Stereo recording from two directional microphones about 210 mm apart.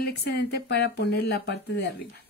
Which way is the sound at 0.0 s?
50° left (ahead or behind).